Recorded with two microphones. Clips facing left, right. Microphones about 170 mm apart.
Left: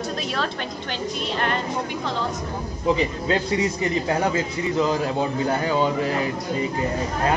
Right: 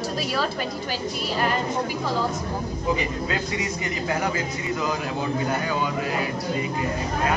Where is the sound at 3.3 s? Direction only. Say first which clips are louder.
Left 6 dB; 30° left (ahead or behind).